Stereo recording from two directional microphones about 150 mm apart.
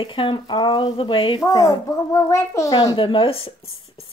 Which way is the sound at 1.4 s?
25° left (ahead or behind).